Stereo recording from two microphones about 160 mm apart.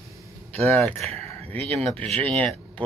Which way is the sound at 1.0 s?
40° right (ahead or behind).